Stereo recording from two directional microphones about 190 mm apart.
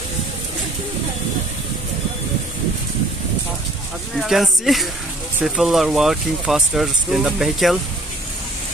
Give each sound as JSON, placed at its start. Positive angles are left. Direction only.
{"t": 4.3, "sound": "speech", "side_deg": 0}